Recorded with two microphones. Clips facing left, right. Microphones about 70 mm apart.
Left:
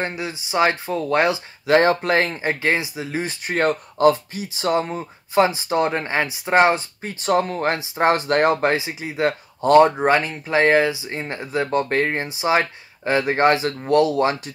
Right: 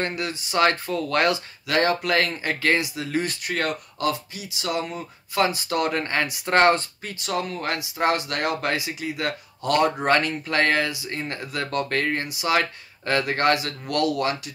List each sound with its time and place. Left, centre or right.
0.0 s speech: centre
3.4 s speech: left; by 6.8 s centre
7.0 s speech: left
10.0 s speech: centre